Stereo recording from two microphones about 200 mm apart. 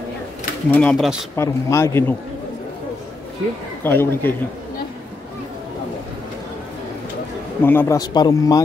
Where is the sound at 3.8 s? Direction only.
10° left (ahead or behind).